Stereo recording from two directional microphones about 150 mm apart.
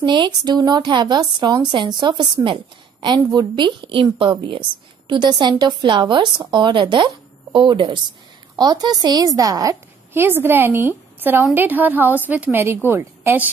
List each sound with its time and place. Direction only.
0.0 s a woman's voice: 30° right (ahead or behind); by 13.5 s 15° right (ahead or behind)